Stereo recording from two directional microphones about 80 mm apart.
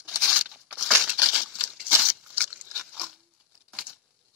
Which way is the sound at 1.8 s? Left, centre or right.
Right.